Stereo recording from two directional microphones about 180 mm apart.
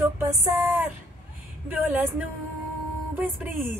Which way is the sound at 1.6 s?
10° right (ahead or behind).